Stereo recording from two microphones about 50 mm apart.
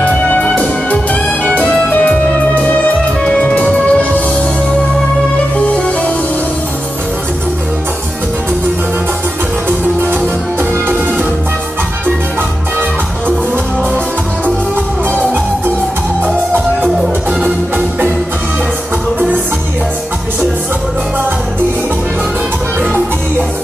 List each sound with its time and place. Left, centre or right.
0.0 s music: left
19.1 s music: right